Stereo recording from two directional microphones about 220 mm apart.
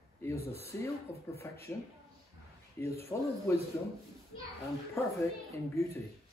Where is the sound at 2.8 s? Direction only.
10° left (ahead or behind).